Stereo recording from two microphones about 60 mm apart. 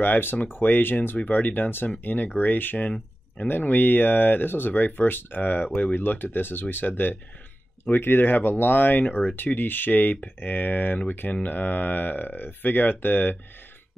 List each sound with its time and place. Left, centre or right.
0.0 s speech: left